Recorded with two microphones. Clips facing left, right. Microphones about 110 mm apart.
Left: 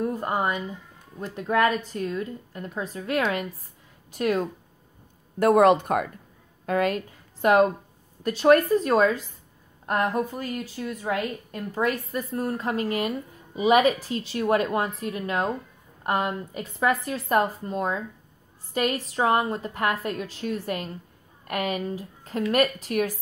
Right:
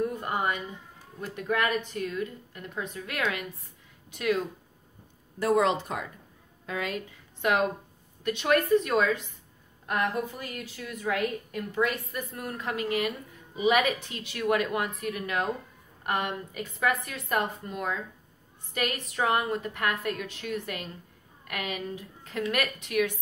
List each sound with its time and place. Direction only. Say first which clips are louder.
0.0 s a woman's voice: left 3 dB; 35° left (ahead or behind)
5.4 s a woman's voice: left 7 dB; 55° left (ahead or behind); by 23.1 s 35° left (ahead or behind)